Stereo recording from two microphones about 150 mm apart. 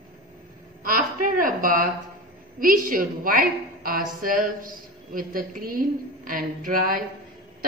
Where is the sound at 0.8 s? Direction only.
70° right (ahead or behind).